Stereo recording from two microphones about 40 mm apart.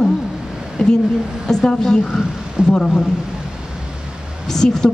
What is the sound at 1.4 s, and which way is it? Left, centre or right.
A woman's voice, centre.